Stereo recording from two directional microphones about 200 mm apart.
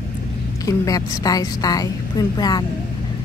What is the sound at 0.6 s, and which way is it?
A woman's voice, 15° left (ahead or behind).